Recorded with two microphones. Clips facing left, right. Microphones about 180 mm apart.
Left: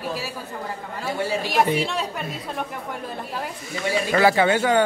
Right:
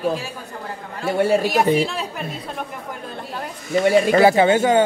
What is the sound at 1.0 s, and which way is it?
Speech, 60° right (ahead or behind).